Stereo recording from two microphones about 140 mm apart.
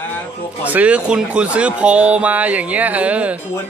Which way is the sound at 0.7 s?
10° right (ahead or behind).